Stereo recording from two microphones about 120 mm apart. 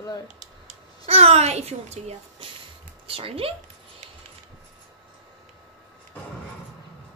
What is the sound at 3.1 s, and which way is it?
Speech, 50° right (ahead or behind).